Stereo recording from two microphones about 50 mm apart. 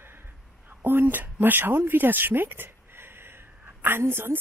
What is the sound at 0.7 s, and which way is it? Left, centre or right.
A woman's voice, right.